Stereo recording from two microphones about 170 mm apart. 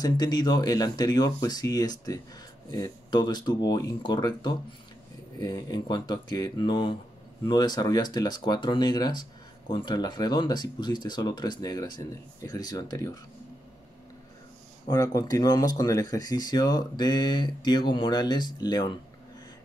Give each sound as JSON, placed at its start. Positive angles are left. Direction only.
{"t": 0.0, "sound": "speech", "side_deg": 25}
{"t": 14.9, "sound": "speech", "side_deg": 20}